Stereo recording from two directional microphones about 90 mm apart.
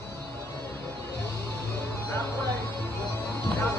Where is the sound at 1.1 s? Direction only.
25° left (ahead or behind).